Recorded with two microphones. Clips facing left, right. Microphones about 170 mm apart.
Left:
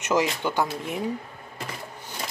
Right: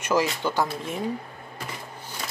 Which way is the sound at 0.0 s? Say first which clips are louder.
Even; 20° left (ahead or behind).